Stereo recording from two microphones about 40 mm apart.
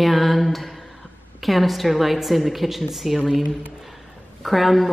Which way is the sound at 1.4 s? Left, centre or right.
Centre.